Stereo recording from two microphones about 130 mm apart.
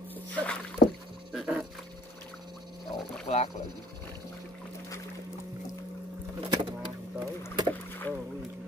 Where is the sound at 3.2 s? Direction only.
55° left (ahead or behind).